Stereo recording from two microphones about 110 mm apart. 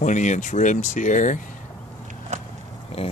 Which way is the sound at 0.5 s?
90° left.